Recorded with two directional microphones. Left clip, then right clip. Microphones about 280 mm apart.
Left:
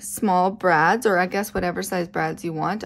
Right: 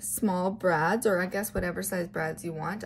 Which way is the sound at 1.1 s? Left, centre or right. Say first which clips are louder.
Left 7 dB; centre.